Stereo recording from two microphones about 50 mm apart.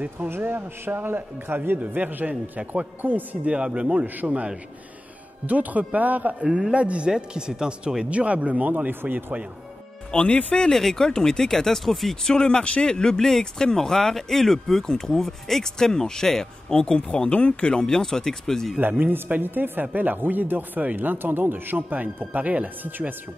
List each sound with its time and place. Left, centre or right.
0.3 s a man's voice: right
3.4 s speech: right
5.5 s speech: right
10.1 s speech: left
10.7 s speech: centre
12.3 s speech: centre
18.8 s speech: right